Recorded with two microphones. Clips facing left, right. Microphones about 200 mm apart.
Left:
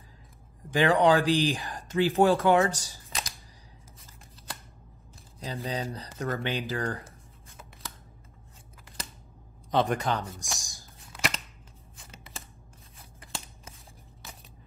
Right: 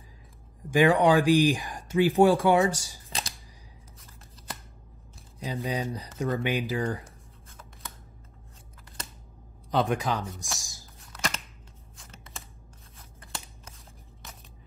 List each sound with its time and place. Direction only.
0.7 s speech: 15° right (ahead or behind)
3.1 s camera: 30° right (ahead or behind)
5.4 s speech: 15° right (ahead or behind)
9.7 s speech: centre (ahead or behind)